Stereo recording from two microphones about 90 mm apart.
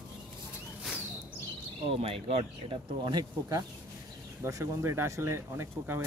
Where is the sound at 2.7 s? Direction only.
60° right (ahead or behind).